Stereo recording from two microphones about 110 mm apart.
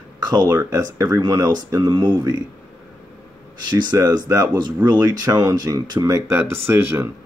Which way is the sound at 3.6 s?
40° right (ahead or behind).